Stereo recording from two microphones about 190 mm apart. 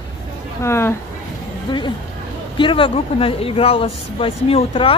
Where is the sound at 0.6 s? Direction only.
15° left (ahead or behind).